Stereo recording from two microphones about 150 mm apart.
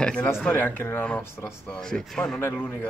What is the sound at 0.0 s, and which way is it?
Speech, 5° left (ahead or behind).